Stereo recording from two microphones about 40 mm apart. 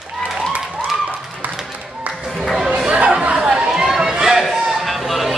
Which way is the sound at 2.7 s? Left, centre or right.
Right.